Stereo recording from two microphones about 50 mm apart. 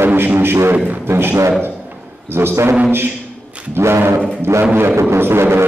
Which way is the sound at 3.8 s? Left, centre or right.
Right.